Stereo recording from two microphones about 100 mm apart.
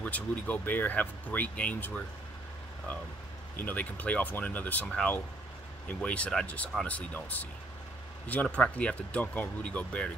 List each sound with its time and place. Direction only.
0.0 s speech: 15° left (ahead or behind)
3.5 s speech: 15° left (ahead or behind)